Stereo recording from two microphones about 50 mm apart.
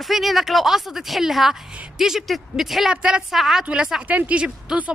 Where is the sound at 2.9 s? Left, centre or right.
Centre.